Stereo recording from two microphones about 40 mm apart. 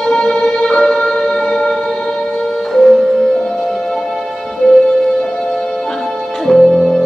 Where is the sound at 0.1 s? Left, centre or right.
Centre.